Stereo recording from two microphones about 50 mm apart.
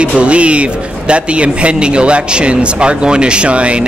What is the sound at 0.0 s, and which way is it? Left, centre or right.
A man's voice, right.